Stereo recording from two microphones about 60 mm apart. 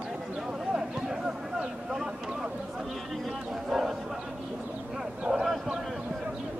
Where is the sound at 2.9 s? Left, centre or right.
Centre.